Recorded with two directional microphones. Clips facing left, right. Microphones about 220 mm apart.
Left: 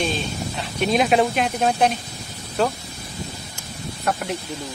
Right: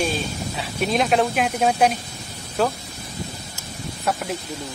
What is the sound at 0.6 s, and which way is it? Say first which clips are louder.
Speech: left 2 dB; centre (ahead or behind).